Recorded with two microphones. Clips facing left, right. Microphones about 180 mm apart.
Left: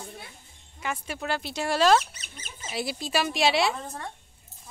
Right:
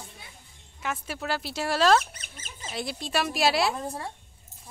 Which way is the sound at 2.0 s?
50° right (ahead or behind).